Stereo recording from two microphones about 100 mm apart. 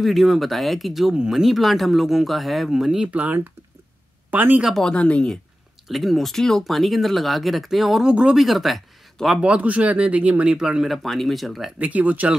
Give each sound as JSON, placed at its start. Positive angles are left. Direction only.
{"t": 0.0, "sound": "speech", "side_deg": 0}
{"t": 4.6, "sound": "speech", "side_deg": 5}
{"t": 9.4, "sound": "speech", "side_deg": -15}
{"t": 11.8, "sound": "speech", "side_deg": -15}